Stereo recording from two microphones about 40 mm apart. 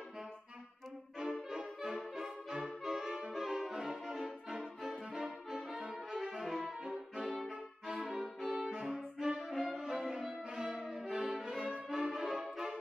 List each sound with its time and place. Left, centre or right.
1.8 s brass instrument: centre
5.1 s brass instrument: centre
5.6 s brass instrument: centre
6.4 s saxophone: centre
6.8 s music: centre
7.4 s brass instrument: centre
8.0 s saxophone: centre
11.9 s brass instrument: centre